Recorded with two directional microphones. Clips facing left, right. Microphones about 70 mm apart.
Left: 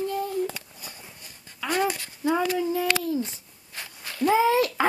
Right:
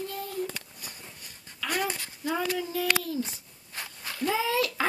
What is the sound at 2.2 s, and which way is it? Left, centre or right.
Child singing, left.